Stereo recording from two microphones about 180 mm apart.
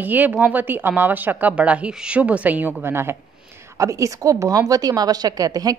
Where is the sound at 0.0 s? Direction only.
10° right (ahead or behind).